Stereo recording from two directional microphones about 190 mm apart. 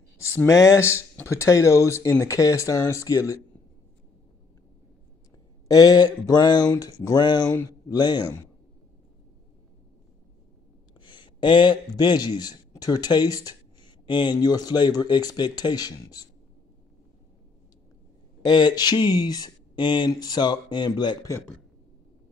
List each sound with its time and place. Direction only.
0.2 s speech: 15° left (ahead or behind)
5.7 s speech: 20° left (ahead or behind)
11.1 s a man's voice: 25° left (ahead or behind)
18.4 s speech: 20° left (ahead or behind)